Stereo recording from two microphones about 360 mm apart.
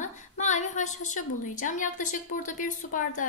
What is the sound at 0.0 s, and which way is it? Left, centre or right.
A woman's voice, centre.